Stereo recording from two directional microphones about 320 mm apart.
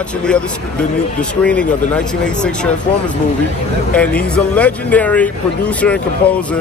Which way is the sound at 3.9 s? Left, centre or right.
Centre.